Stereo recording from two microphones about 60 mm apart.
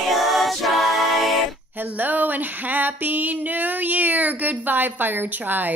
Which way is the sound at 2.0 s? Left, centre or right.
Right.